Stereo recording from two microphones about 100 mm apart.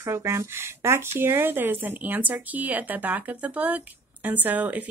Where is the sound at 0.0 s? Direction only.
30° right (ahead or behind).